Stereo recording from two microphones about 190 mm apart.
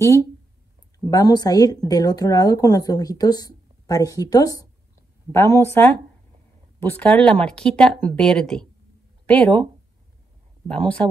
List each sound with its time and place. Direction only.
1.1 s a woman's voice: 20° left (ahead or behind)
10.7 s speech: 5° left (ahead or behind)